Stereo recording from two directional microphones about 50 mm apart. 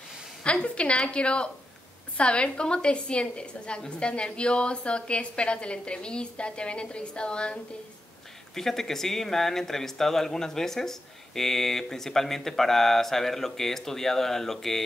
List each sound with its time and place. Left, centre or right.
0.4 s a woman's voice: left
8.5 s speech: centre